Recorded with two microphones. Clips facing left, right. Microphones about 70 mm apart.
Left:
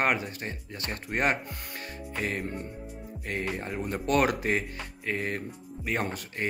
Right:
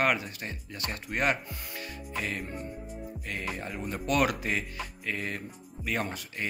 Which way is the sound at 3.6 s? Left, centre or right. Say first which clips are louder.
Left 3 dB; left.